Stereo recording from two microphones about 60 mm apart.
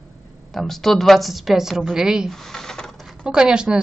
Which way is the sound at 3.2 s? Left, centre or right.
Centre.